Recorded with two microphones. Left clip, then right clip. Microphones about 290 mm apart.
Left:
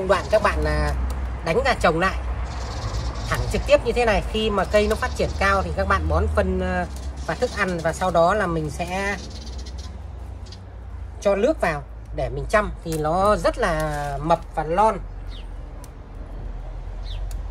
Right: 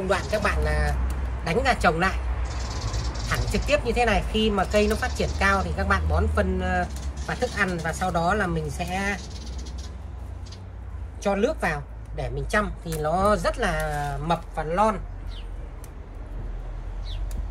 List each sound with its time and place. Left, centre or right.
0.1 s speech: centre
3.3 s speech: centre
11.1 s speech: centre